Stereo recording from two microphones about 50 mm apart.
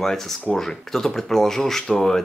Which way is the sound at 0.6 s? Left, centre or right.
Centre.